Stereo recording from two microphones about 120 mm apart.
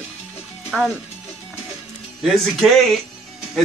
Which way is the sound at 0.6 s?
5° right (ahead or behind).